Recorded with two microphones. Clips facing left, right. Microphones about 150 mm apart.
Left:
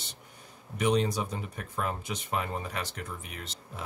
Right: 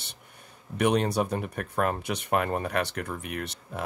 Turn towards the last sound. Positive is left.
turn(degrees=-60)  # may be behind; listen again after turning